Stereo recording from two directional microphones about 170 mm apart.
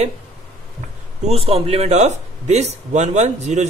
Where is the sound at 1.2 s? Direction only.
35° right (ahead or behind).